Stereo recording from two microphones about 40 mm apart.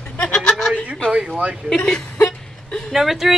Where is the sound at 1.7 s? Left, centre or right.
Left.